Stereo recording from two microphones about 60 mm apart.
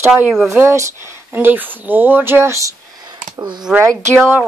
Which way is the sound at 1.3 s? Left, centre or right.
Right.